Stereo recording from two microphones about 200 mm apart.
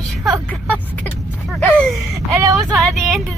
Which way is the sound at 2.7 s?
Centre (ahead or behind).